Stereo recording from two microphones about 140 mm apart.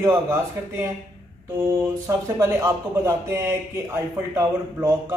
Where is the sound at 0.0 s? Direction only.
20° right (ahead or behind).